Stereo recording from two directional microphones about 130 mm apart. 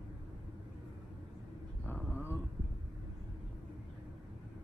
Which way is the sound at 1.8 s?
15° left (ahead or behind).